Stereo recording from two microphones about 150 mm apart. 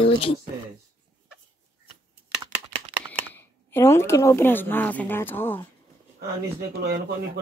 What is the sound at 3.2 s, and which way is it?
Speech, 15° left (ahead or behind).